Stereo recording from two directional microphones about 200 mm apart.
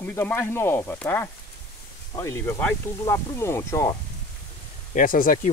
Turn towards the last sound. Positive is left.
turn(degrees=45)  # may be behind; listen again after turning